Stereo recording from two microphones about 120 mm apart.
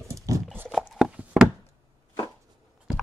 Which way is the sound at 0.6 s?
Centre (ahead or behind).